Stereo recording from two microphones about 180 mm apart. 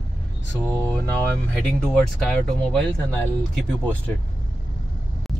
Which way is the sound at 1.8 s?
5° left (ahead or behind).